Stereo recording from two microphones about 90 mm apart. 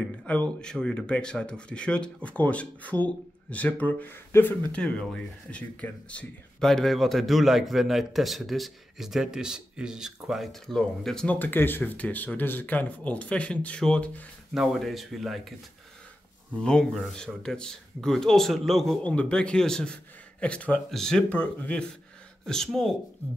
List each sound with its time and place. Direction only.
0.3 s speech: 10° left (ahead or behind)
4.8 s speech: 10° left (ahead or behind)
11.3 s speech: 20° left (ahead or behind)
14.5 s speech: centre (ahead or behind)
16.5 s speech: 10° left (ahead or behind)
19.0 s speech: 15° left (ahead or behind)